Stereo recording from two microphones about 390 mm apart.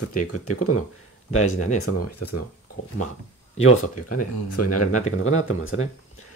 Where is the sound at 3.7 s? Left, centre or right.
Left.